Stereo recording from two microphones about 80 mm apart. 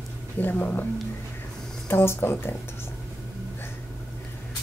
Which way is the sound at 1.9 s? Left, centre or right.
Left.